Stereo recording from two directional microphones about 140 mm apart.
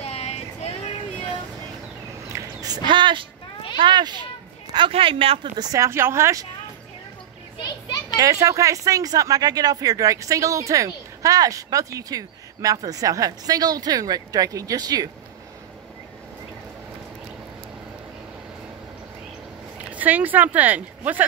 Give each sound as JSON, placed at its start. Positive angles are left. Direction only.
{"t": 0.0, "sound": "vehicle", "side_deg": 45}
{"t": 2.3, "sound": "a sound", "side_deg": -25}
{"t": 3.7, "sound": "speech", "side_deg": -35}
{"t": 5.6, "sound": "speech", "side_deg": -25}
{"t": 8.2, "sound": "speech", "side_deg": -25}
{"t": 19.9, "sound": "speech", "side_deg": -10}